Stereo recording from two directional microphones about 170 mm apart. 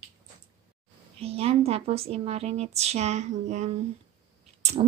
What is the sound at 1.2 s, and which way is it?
A woman's voice, 35° right (ahead or behind).